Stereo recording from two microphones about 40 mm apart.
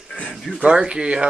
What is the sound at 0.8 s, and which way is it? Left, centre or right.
Speech, right.